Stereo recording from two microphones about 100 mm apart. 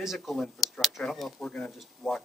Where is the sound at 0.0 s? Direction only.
Centre (ahead or behind).